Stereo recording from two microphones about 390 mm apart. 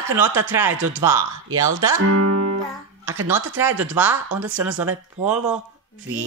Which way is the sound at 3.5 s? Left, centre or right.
Centre.